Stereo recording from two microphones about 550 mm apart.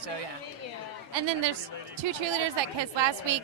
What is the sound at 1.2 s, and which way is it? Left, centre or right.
A woman's voice, right.